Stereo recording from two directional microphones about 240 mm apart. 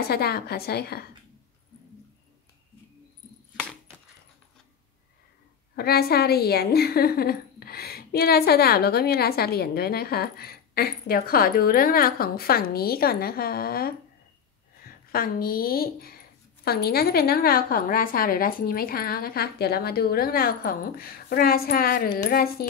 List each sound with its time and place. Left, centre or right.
0.1 s a woman's voice: left
5.8 s a woman's voice: left